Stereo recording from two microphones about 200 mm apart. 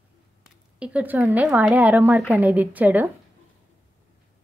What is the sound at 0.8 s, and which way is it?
A woman's voice, 5° right (ahead or behind).